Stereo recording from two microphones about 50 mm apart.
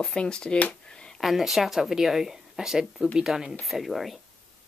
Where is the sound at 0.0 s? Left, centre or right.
Centre.